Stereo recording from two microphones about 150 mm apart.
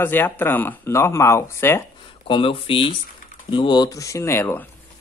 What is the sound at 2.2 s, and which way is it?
Speech, 35° left (ahead or behind).